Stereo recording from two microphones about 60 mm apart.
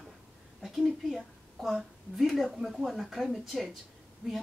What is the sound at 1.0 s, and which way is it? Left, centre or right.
A woman's voice, centre.